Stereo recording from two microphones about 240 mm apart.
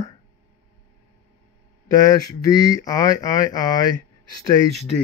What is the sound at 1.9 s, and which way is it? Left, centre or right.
Speech, centre.